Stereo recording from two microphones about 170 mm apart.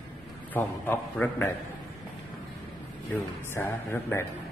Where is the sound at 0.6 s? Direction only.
10° left (ahead or behind).